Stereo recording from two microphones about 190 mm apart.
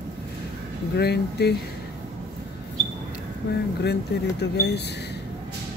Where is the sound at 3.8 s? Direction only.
60° left (ahead or behind).